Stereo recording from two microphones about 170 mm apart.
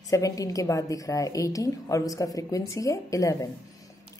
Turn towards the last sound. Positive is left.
turn(degrees=20)  # may be behind; listen again after turning